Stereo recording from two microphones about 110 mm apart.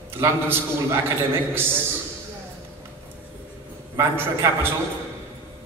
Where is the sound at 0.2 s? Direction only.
20° right (ahead or behind).